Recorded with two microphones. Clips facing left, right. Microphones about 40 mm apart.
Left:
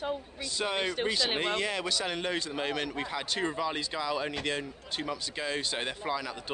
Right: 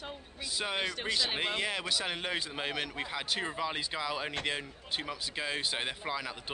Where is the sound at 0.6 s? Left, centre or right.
Centre.